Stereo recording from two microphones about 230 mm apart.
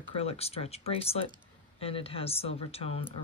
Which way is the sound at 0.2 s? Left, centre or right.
Left.